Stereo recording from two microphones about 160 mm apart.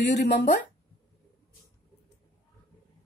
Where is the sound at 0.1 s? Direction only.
90° left.